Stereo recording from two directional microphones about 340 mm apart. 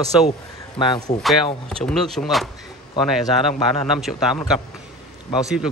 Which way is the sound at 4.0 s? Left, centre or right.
Centre.